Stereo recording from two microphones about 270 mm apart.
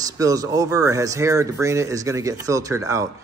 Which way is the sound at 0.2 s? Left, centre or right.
Centre.